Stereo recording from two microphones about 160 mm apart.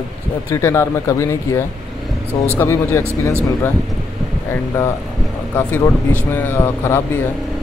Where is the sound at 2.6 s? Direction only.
15° left (ahead or behind).